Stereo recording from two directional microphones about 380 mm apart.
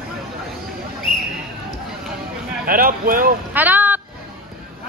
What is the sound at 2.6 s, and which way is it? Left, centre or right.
Speech, right.